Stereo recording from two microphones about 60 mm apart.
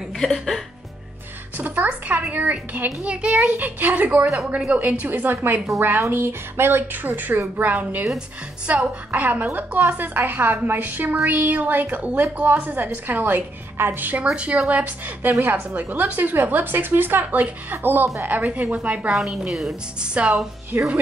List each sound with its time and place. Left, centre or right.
0.2 s music: centre
1.6 s a woman's voice: right
14.3 s a woman's voice: centre
15.4 s a woman's voice: right
19.1 s music: centre
20.0 s a woman's voice: centre